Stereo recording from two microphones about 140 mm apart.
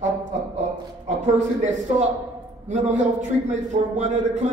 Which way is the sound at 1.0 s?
55° right (ahead or behind).